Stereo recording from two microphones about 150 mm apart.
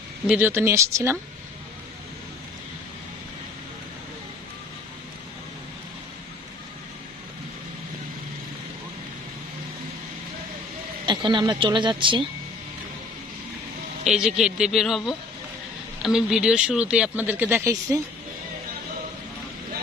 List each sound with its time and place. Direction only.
0.3 s speech: 10° right (ahead or behind)
11.1 s speech: 30° right (ahead or behind)
14.0 s a man's voice: 5° right (ahead or behind); by 18.0 s 20° right (ahead or behind)